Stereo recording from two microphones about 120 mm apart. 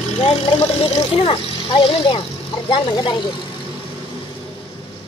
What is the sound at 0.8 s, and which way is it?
Speech, 50° left (ahead or behind).